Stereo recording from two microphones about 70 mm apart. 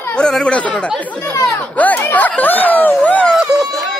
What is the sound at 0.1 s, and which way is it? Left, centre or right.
Speech, centre.